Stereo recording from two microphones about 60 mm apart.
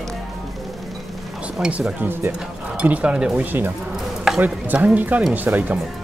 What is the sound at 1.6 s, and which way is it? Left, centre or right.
Speech, centre.